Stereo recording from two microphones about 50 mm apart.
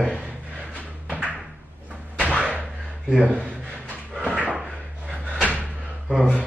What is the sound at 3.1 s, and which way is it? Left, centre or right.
Speech, centre.